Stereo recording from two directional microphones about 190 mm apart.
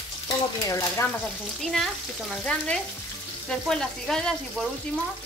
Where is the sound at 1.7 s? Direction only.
Centre (ahead or behind).